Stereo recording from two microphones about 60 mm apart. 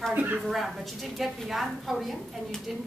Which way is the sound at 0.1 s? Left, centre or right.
Right.